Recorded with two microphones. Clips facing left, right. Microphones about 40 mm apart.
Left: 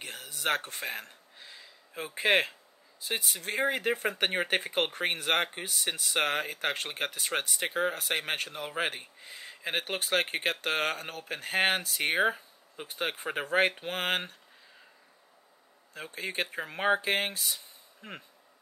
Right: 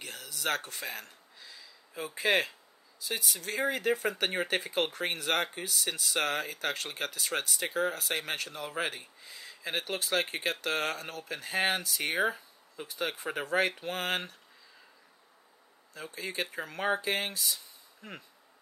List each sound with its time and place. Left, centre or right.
0.0 s a sound: left
3.0 s speech: left
15.9 s speech: left